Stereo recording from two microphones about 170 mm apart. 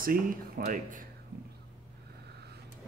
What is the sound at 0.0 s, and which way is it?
Speech, 60° right (ahead or behind).